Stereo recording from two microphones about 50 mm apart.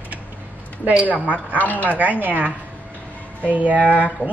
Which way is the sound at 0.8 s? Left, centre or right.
Right.